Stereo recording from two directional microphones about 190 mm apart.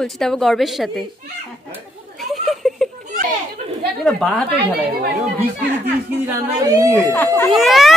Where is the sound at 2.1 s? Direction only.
Centre (ahead or behind).